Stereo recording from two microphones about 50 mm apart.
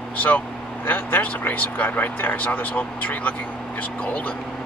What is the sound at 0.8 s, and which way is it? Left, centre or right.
Speech, left.